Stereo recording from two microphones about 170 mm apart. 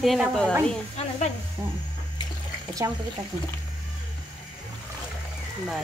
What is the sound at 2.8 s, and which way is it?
Speech, 20° right (ahead or behind).